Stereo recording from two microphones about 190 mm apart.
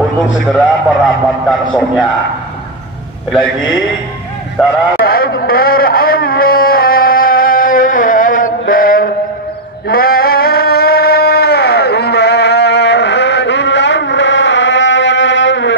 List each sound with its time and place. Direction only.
1.0 s a man's voice: centre (ahead or behind)
4.6 s a man's voice: centre (ahead or behind)
5.0 s a sound: 50° left (ahead or behind); by 15.7 s 75° left (ahead or behind)